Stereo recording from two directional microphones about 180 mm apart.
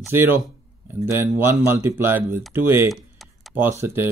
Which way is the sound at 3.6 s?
10° right (ahead or behind).